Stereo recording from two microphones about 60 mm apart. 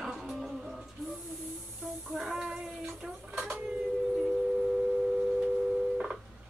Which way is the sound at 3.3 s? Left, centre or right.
Centre.